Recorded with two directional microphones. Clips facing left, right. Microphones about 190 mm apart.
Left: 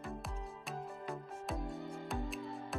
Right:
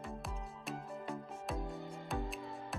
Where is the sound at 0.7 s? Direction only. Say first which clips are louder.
Right 1 dB; centre (ahead or behind).